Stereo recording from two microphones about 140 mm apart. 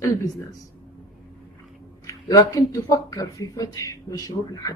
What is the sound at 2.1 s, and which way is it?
Speech, 25° left (ahead or behind).